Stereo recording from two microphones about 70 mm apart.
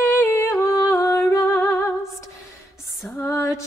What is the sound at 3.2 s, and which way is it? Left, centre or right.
Music, left.